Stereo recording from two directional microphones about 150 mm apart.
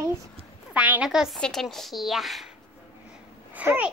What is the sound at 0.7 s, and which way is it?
A woman's voice, 10° right (ahead or behind).